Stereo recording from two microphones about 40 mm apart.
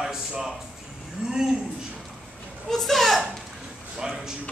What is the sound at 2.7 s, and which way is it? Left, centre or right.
Speech, centre.